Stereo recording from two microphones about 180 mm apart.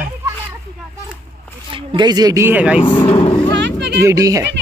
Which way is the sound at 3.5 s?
75° right (ahead or behind).